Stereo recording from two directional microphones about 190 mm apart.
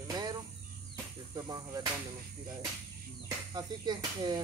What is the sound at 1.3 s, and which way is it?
Speech, 20° right (ahead or behind).